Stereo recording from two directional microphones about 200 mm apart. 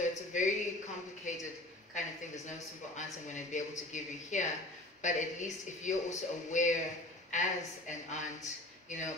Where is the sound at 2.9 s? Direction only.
35° left (ahead or behind).